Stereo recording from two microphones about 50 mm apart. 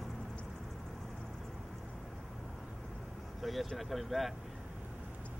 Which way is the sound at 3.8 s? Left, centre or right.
Centre.